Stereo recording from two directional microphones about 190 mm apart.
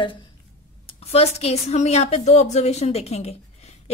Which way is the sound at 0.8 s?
30° left (ahead or behind).